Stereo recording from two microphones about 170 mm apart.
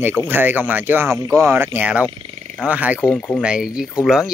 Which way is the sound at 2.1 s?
35° right (ahead or behind).